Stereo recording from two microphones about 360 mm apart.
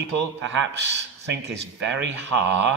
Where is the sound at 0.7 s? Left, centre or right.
Right.